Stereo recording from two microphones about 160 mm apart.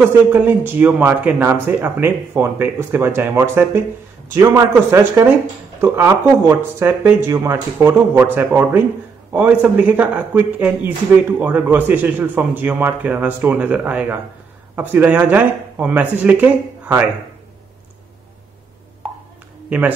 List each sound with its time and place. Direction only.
0.3 s speech: 15° right (ahead or behind)